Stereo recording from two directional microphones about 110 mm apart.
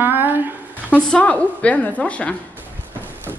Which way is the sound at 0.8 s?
10° left (ahead or behind).